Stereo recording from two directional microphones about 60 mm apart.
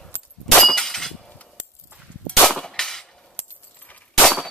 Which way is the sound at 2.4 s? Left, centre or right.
Centre.